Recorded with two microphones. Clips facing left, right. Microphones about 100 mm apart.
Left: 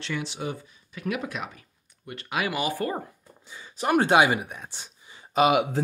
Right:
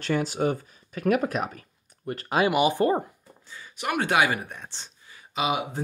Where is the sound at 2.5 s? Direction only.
20° right (ahead or behind).